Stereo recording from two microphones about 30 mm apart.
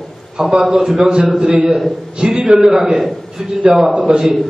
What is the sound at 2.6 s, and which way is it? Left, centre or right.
Speech, centre.